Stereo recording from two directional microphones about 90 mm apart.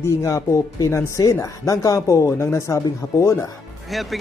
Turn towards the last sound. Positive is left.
turn(degrees=0)  # may be behind; listen again after turning